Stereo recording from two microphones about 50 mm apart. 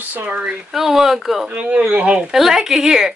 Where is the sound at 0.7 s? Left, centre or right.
Centre.